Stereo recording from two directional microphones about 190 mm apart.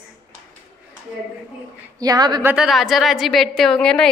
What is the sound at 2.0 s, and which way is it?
Speech, 20° right (ahead or behind).